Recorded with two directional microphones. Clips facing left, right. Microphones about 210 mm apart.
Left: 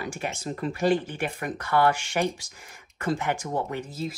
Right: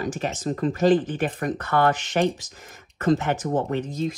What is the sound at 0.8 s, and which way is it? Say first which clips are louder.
Speech: right 5 dB; 10° left (ahead or behind).